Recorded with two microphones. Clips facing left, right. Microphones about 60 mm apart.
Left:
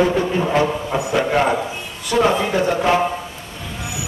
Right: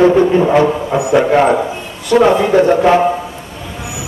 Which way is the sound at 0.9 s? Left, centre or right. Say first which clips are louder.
Right 8 dB; centre.